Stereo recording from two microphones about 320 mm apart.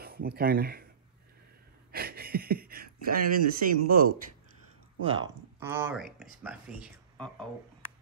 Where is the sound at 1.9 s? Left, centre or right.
Right.